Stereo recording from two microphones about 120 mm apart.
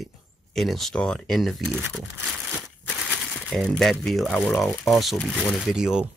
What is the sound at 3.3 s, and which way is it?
Speech, 5° left (ahead or behind).